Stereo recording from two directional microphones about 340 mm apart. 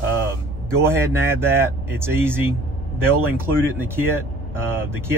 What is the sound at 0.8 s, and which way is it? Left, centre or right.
Speech, centre.